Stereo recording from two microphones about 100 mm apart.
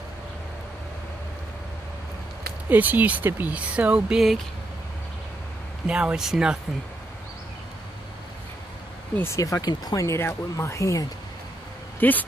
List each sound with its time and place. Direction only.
2.7 s speech: 20° right (ahead or behind)
5.9 s speech: 10° right (ahead or behind)
9.1 s speech: 25° left (ahead or behind)
9.4 s speech: 40° left (ahead or behind)
12.0 s speech: 15° left (ahead or behind)